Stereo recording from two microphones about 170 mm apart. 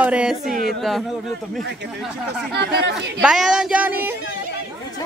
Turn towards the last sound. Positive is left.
turn(degrees=-10)  # may be behind; listen again after turning